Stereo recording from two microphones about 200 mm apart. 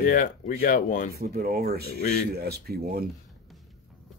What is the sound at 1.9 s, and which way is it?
Speech, 50° left (ahead or behind).